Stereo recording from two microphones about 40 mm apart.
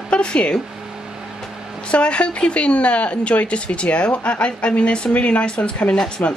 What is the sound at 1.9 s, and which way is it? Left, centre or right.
Speech, left.